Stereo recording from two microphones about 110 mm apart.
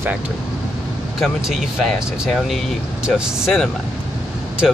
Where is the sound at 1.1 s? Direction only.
Centre (ahead or behind).